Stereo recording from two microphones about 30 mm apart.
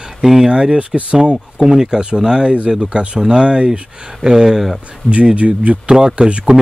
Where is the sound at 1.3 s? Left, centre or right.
Centre.